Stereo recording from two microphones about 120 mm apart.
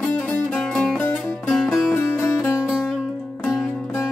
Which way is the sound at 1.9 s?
25° left (ahead or behind).